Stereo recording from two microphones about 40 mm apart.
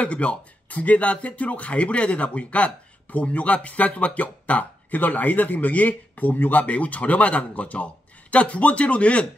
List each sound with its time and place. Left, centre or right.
0.0 s speech: left